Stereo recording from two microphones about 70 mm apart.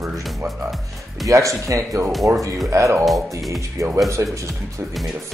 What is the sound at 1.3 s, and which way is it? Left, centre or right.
Speech, right.